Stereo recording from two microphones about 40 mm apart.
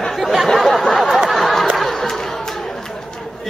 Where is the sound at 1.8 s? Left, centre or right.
Centre.